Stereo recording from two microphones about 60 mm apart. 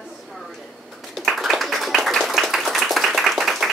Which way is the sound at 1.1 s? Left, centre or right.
Centre.